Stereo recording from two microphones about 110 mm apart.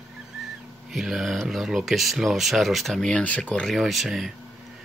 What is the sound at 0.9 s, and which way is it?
Speech, centre (ahead or behind).